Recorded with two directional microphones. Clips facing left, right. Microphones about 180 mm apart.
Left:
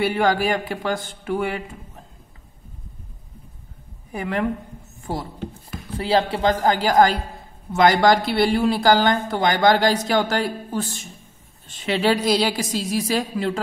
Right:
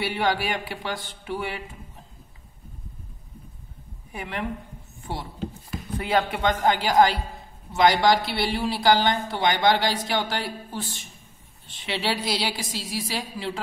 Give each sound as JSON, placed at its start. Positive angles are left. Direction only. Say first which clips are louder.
{"t": 0.0, "sound": "speech", "louder": "left 6 dB", "side_deg": 45}
{"t": 4.1, "sound": "speech", "louder": "left 7 dB", "side_deg": 40}
{"t": 5.9, "sound": "speech", "louder": "left 4 dB", "side_deg": 30}